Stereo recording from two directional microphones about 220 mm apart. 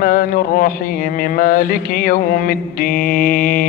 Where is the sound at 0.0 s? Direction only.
40° left (ahead or behind).